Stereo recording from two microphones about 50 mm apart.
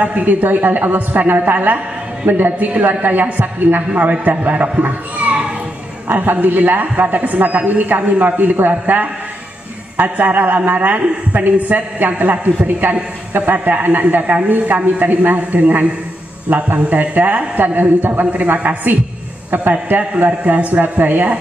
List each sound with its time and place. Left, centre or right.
0.0 s a man's voice: right